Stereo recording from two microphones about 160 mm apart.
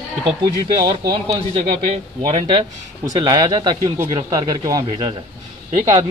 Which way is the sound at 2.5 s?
25° right (ahead or behind).